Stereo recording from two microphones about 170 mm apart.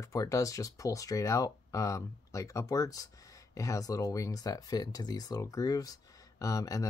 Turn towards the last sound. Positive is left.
turn(degrees=20)  # may be behind; listen again after turning